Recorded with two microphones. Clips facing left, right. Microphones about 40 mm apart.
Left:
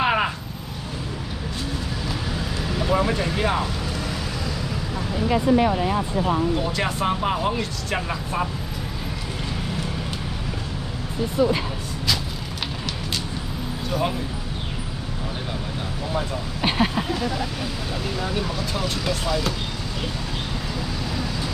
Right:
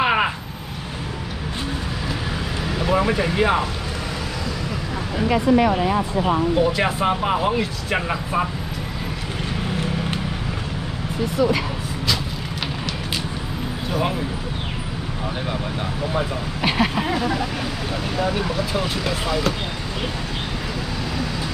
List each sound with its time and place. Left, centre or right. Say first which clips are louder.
0.0 s vehicle: right 2 dB; centre
2.8 s speech: right 2 dB; centre
6.5 s speech: right 5 dB; centre
13.8 s speech: right 1 dB; centre
17.1 s speech: right 3 dB; right